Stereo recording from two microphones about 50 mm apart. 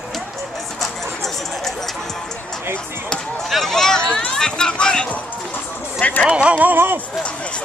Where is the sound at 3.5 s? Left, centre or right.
Centre.